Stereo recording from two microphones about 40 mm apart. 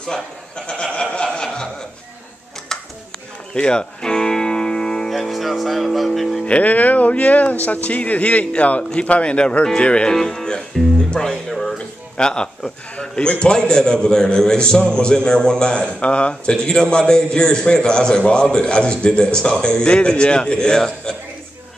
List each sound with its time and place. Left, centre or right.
0.0 s a man's voice: centre
1.3 s a sound: centre
3.5 s music: left
5.1 s music: centre
6.4 s a man's voice: left
10.1 s music: centre
12.2 s a man's voice: left
16.6 s a man's voice: centre